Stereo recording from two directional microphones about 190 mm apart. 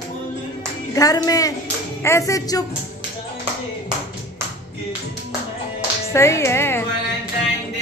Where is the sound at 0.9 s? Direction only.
20° left (ahead or behind).